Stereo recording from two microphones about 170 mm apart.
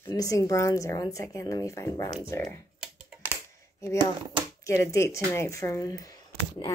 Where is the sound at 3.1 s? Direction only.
15° right (ahead or behind).